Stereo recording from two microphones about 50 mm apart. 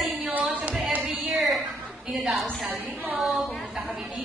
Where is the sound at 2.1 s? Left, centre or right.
Centre.